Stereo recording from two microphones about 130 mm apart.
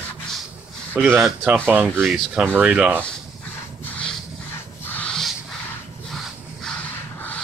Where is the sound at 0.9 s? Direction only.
10° right (ahead or behind).